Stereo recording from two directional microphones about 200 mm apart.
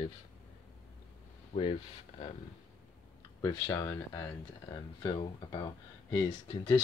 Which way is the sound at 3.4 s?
20° left (ahead or behind).